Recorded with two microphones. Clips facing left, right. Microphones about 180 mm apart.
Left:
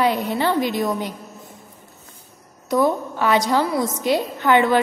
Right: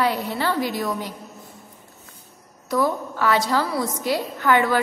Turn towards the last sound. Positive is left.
turn(degrees=20)  # may be behind; listen again after turning